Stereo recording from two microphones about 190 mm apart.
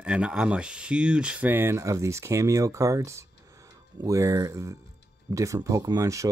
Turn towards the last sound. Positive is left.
turn(degrees=-15)  # may be behind; listen again after turning